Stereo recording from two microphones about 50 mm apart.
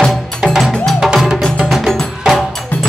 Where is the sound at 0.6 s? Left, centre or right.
Centre.